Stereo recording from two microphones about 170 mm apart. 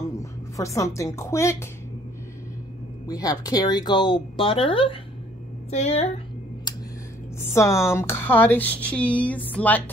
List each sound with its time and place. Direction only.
0.1 s speech: 15° left (ahead or behind)
3.1 s a woman's voice: 20° left (ahead or behind); by 6.2 s 40° left (ahead or behind)
7.3 s speech: 15° left (ahead or behind)